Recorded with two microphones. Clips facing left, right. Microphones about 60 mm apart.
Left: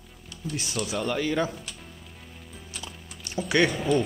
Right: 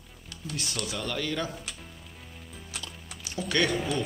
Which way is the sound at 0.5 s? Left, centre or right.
Centre.